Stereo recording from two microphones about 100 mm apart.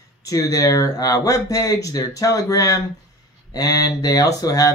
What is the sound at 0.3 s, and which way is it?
Speech, 35° left (ahead or behind).